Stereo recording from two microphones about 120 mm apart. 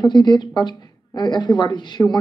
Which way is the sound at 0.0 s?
35° left (ahead or behind).